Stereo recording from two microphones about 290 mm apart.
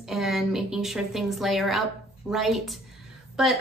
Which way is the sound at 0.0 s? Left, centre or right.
Centre.